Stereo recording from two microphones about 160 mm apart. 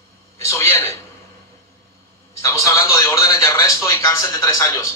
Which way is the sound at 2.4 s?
15° left (ahead or behind).